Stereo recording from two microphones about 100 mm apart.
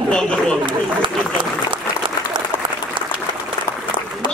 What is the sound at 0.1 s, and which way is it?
Speech, 5° left (ahead or behind).